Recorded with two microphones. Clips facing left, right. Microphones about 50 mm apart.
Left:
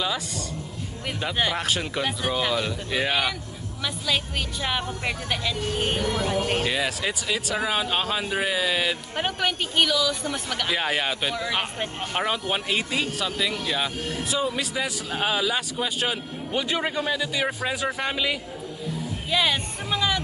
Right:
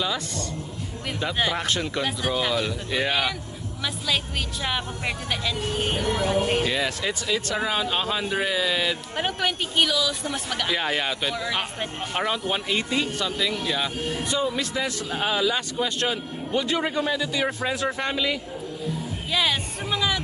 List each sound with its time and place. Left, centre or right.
1.2 s speech: centre
4.6 s speech: centre
9.1 s speech: centre
10.8 s speech: centre
16.5 s a man's voice: left
19.3 s speech: centre